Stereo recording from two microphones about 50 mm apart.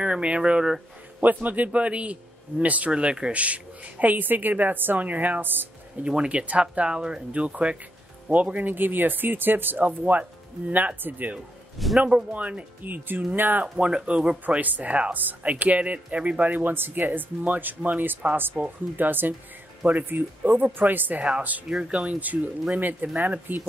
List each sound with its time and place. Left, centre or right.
0.0 s speech: centre
1.2 s speech: right
6.0 s speech: right
12.0 s speech: centre
12.3 s speech: right
13.7 s speech: right
14.4 s speech: right
21.6 s speech: centre
22.0 s speech: right